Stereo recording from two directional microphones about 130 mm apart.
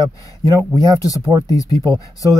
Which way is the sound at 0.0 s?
25° left (ahead or behind).